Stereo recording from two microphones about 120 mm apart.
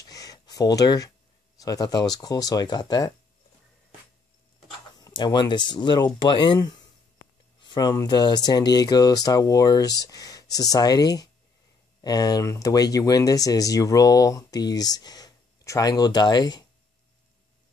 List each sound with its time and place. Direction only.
0.0 s a sound: 30° left (ahead or behind)
1.6 s speech: 30° left (ahead or behind)
5.1 s speech: 40° left (ahead or behind)